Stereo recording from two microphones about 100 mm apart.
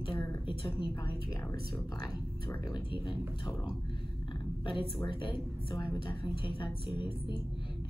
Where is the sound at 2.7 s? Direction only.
60° left (ahead or behind).